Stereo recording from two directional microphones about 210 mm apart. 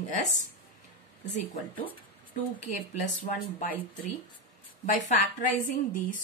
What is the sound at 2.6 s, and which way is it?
A woman's voice, 35° left (ahead or behind).